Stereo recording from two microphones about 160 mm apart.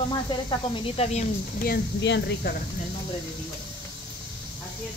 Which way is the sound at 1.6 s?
80° left.